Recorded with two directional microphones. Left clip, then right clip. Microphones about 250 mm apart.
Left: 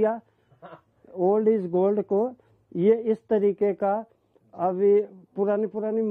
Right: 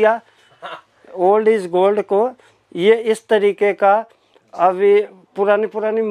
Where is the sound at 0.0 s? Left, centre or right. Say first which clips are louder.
Right 10 dB; centre.